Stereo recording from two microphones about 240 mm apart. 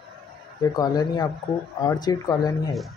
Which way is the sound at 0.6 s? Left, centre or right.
Centre.